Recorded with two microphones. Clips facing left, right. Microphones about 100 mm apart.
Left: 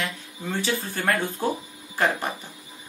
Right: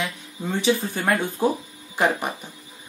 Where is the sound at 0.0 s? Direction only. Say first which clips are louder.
Right 2 dB; 15° right (ahead or behind).